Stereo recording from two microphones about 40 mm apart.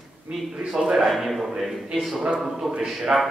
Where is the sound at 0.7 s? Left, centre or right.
Centre.